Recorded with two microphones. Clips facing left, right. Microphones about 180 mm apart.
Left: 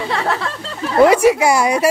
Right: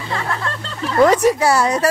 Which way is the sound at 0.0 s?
75° left (ahead or behind).